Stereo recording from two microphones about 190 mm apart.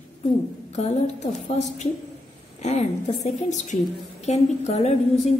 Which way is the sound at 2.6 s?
35° left (ahead or behind).